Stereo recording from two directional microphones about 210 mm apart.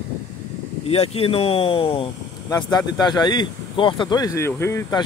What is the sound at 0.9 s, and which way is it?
Speech, 30° left (ahead or behind).